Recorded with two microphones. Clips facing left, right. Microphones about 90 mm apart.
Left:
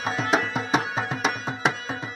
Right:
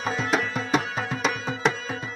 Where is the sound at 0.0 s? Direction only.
5° left (ahead or behind).